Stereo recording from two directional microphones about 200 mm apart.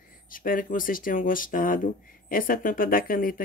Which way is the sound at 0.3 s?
45° left (ahead or behind).